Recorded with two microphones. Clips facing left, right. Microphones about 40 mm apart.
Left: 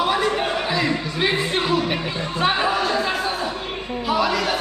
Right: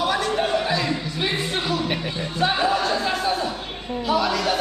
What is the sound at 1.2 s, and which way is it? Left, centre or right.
Speech, left.